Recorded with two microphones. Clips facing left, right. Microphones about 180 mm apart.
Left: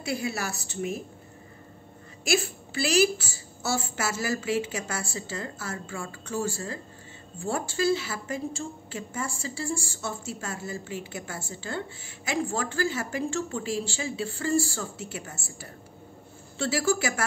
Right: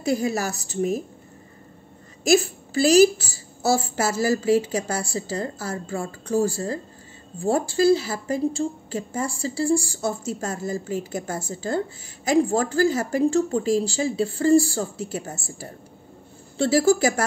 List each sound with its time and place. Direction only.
0.0 s a woman's voice: 40° right (ahead or behind)
2.2 s a woman's voice: 40° right (ahead or behind)